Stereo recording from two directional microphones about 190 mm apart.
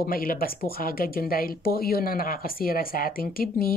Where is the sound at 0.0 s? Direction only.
50° left (ahead or behind).